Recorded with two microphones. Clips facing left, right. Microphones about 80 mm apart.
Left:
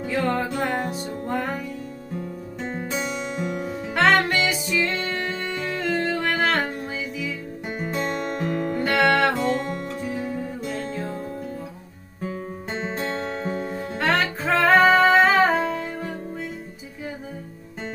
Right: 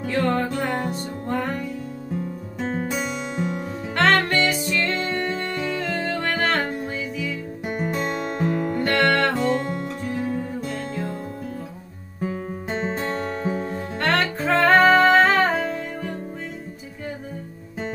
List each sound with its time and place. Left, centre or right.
0.0 s music: centre
2.8 s music: centre
12.2 s music: centre